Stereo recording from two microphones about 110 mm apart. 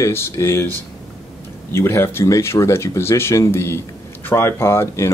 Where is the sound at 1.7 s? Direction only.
20° left (ahead or behind).